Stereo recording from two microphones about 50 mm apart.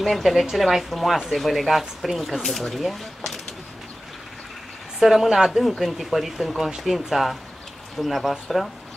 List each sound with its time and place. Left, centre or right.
0.0 s speech: centre
5.0 s speech: centre